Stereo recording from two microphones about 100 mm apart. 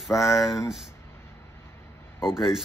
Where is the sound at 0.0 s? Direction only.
5° right (ahead or behind).